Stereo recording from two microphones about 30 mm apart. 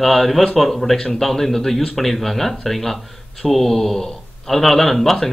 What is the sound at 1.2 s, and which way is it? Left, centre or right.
A man's voice, centre.